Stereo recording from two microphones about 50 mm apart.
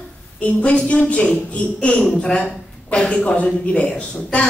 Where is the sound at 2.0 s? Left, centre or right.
Centre.